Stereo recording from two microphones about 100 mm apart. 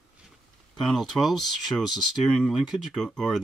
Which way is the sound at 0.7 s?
5° left (ahead or behind).